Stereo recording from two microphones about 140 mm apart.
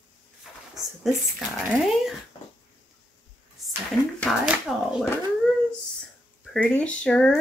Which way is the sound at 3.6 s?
Centre (ahead or behind).